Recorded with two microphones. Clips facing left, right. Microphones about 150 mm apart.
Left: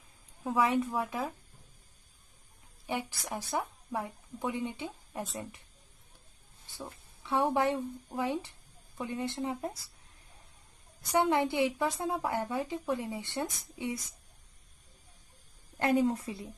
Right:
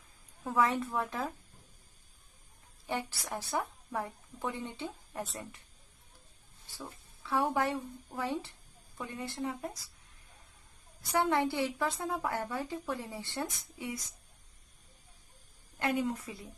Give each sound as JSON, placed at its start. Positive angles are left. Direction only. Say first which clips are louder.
{"t": 0.4, "sound": "a woman's voice", "louder": "left 2 dB", "side_deg": 15}
{"t": 0.9, "sound": "speech", "louder": "left 1 dB", "side_deg": 5}
{"t": 2.9, "sound": "a woman's voice", "louder": "left 1 dB", "side_deg": 15}
{"t": 6.8, "sound": "speech", "louder": "left 2 dB", "side_deg": 20}
{"t": 11.1, "sound": "speech", "louder": "left 2 dB", "side_deg": 20}
{"t": 15.8, "sound": "a woman's voice", "louder": "left 5 dB", "side_deg": 35}